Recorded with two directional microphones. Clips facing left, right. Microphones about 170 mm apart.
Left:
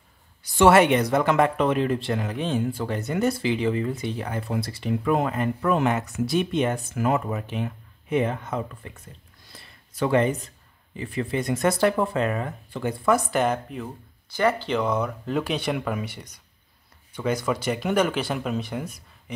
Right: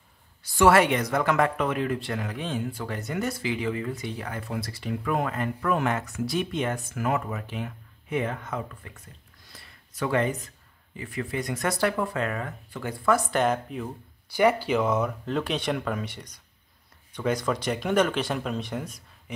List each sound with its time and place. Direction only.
0.6 s speech: 25° left (ahead or behind)
9.5 s a sound: 30° left (ahead or behind)
11.0 s speech: 30° left (ahead or behind)
13.3 s speech: centre (ahead or behind)
14.3 s speech: 10° right (ahead or behind)